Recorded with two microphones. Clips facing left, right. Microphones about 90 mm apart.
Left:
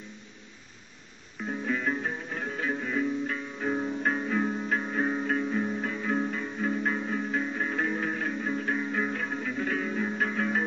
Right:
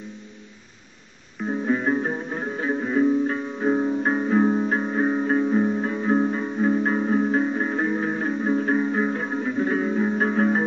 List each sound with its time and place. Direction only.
1.5 s music: 30° right (ahead or behind)